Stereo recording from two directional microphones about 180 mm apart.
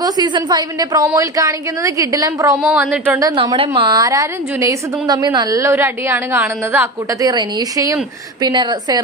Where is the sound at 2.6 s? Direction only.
5° right (ahead or behind).